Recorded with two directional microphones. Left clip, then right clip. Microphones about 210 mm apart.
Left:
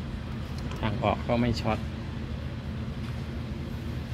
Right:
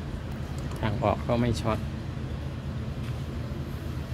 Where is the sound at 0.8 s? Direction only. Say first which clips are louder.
Right 1 dB; centre (ahead or behind).